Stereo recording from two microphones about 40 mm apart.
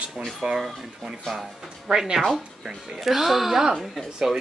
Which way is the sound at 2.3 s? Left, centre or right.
Centre.